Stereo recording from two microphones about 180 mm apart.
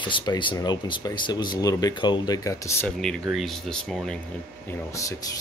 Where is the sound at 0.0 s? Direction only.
25° left (ahead or behind).